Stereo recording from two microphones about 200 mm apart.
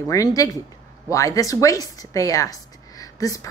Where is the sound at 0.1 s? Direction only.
15° left (ahead or behind).